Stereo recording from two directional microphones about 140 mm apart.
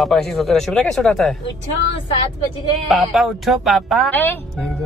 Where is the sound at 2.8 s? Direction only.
Centre (ahead or behind).